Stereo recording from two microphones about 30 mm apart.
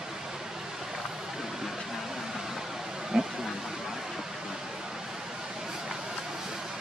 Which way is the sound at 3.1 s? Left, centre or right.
Centre.